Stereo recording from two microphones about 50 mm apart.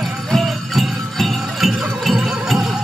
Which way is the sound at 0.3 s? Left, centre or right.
Centre.